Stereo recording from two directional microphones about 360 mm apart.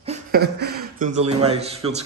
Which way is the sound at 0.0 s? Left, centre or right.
Right.